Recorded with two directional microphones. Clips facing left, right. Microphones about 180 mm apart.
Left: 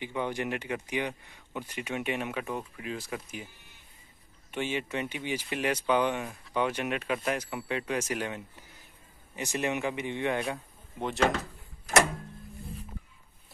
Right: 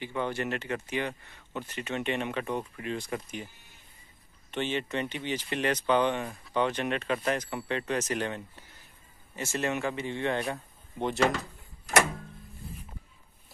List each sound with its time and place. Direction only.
0.0 s speech: 15° left (ahead or behind)
4.5 s speech: 10° left (ahead or behind)
11.0 s speech: centre (ahead or behind)